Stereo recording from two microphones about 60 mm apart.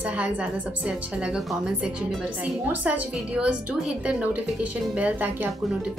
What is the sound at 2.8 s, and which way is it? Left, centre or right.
Speech, right.